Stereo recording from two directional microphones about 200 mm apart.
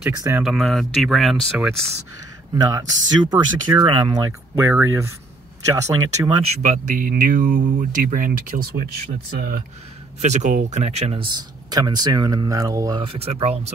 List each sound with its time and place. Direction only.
0.0 s speech: 15° right (ahead or behind)
0.4 s speech: centre (ahead or behind)
2.5 s speech: 20° right (ahead or behind)
6.2 s speech: 35° right (ahead or behind)
10.2 s speech: 35° right (ahead or behind)